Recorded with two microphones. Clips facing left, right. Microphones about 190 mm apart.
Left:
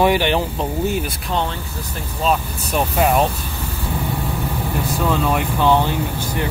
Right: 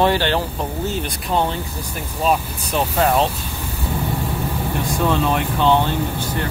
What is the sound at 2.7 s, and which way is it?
Speech, 10° left (ahead or behind).